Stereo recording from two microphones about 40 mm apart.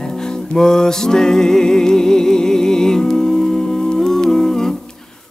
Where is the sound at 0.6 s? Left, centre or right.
Centre.